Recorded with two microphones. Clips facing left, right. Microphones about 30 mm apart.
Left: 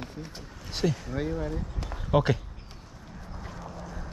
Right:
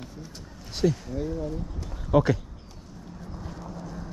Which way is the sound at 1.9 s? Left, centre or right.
Left.